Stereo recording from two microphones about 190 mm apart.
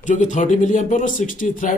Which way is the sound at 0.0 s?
40° left (ahead or behind).